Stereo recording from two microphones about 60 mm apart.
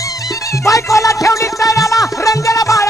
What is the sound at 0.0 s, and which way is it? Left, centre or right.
Music, left.